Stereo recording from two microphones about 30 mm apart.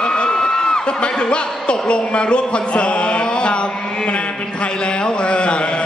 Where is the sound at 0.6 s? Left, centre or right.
Left.